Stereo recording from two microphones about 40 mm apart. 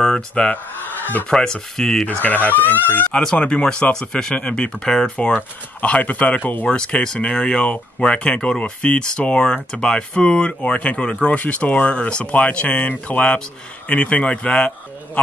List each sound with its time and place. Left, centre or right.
0.4 s speech: centre
2.0 s speech: left
3.3 s speech: left
6.8 s speech: centre